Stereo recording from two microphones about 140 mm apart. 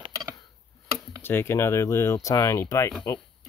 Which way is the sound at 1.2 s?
15° left (ahead or behind).